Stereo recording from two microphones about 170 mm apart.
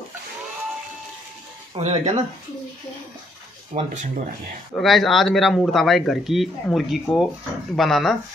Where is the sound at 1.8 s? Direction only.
30° right (ahead or behind).